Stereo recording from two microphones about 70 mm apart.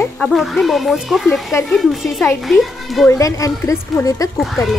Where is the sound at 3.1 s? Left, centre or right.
Left.